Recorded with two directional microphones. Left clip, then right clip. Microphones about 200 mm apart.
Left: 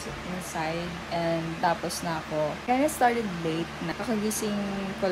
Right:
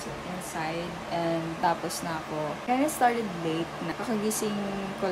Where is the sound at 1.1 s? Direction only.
15° right (ahead or behind).